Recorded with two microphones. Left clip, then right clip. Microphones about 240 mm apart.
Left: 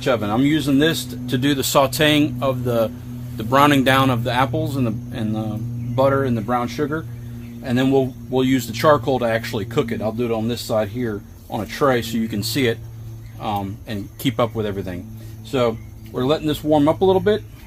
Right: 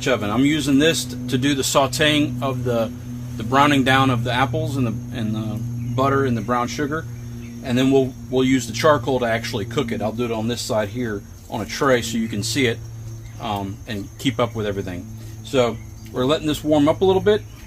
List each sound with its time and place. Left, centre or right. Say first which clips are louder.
0.0 s speech: left 1 dB; left
16.2 s speech: even; left